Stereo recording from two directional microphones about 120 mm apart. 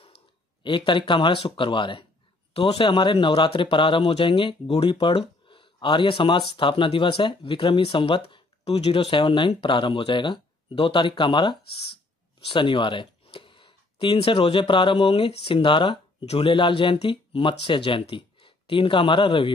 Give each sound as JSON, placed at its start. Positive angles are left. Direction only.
{"t": 0.7, "sound": "speech", "side_deg": 40}